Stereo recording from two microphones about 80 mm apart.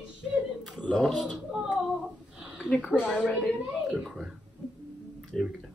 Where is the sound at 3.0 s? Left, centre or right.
Centre.